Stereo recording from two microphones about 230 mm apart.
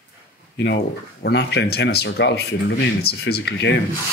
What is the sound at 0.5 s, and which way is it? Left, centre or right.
Speech, left.